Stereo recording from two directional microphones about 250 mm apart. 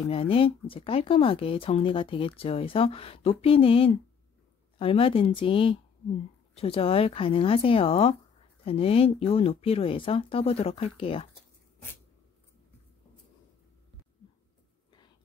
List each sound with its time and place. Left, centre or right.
0.1 s speech: left